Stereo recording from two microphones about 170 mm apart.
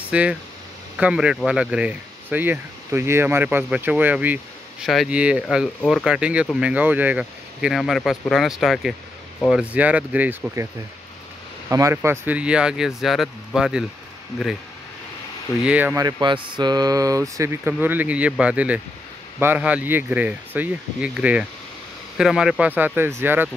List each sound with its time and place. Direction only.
0.1 s speech: 5° right (ahead or behind)
11.7 s speech: 15° right (ahead or behind)
15.6 s speech: 10° right (ahead or behind)
16.0 s speech: 25° right (ahead or behind)